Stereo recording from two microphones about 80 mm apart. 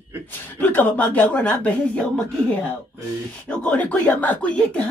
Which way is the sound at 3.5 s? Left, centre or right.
Centre.